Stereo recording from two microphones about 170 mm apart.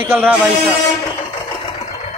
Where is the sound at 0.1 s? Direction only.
10° right (ahead or behind).